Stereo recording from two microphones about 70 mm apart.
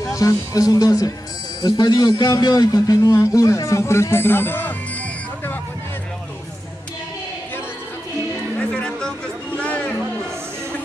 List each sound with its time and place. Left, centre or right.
0.0 s speech: left
1.6 s speech: left
3.2 s speech: left
8.5 s music: centre
9.5 s a sound: centre